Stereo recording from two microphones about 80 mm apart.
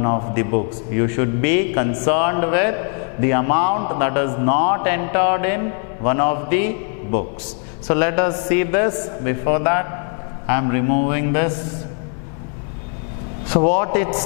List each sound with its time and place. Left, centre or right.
0.0 s a man's voice: centre
13.5 s a man's voice: centre